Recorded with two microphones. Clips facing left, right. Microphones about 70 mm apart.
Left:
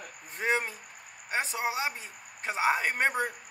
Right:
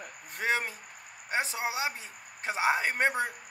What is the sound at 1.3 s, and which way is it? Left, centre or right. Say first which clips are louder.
A man's voice: left 1 dB; centre.